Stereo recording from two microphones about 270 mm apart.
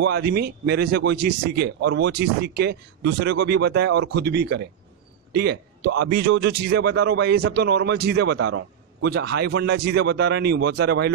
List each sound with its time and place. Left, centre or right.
0.0 s a man's voice: right
5.9 s a man's voice: right
6.4 s speech: right